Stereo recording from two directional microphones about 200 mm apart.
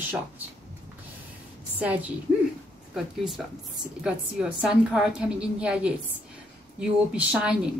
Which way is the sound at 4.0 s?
5° right (ahead or behind).